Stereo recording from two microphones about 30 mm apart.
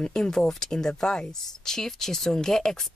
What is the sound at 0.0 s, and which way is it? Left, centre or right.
Speech, left.